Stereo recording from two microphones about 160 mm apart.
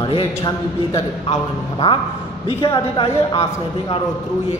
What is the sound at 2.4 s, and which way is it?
A man's voice, 30° left (ahead or behind).